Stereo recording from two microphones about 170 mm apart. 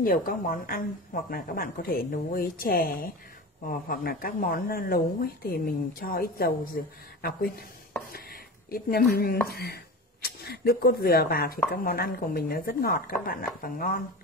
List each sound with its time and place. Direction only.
0.0 s speech: 55° left (ahead or behind)